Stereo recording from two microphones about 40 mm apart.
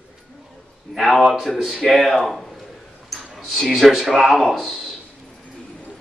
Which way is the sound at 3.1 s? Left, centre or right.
Centre.